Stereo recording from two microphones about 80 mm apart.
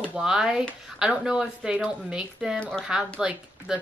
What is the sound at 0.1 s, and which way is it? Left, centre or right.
Speech, centre.